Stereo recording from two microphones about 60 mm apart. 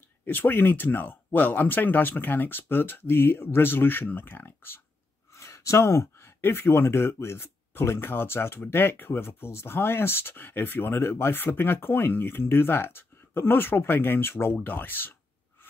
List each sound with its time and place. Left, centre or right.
0.2 s speech: left
5.3 s a sound: left
6.4 s speech: left